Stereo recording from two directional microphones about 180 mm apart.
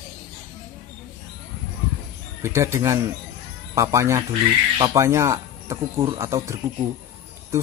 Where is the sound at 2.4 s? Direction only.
15° right (ahead or behind).